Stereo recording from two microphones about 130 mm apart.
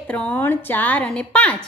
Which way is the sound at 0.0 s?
10° left (ahead or behind).